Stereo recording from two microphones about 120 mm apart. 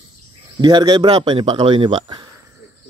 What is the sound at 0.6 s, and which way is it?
Speech, 35° right (ahead or behind).